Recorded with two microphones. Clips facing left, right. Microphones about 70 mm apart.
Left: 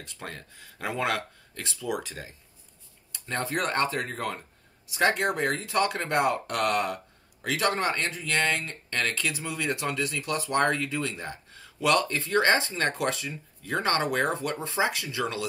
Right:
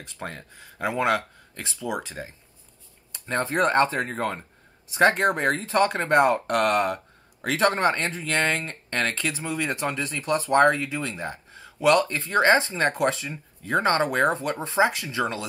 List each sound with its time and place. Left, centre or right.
0.0 s speech: right
10.7 s speech: centre